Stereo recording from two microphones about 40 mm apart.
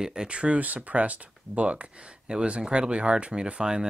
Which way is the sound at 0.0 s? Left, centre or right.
Centre.